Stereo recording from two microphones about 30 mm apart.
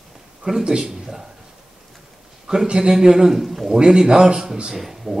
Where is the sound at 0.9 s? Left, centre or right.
Centre.